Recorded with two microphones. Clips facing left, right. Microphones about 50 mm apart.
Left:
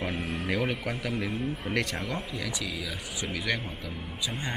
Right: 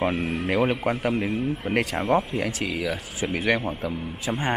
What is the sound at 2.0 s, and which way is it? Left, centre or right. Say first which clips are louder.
Speech: right 12 dB; right.